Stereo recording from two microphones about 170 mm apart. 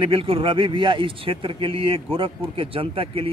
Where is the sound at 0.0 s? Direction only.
30° right (ahead or behind).